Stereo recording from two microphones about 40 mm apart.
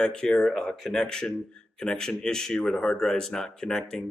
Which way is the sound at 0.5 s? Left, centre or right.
Centre.